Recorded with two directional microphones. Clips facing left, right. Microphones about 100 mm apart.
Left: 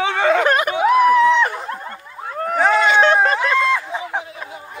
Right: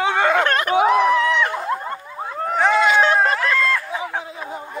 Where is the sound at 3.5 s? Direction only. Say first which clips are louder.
Left 3 dB; 15° left (ahead or behind).